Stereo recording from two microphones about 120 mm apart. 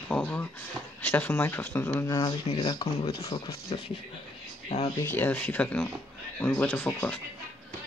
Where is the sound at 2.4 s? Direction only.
55° left (ahead or behind).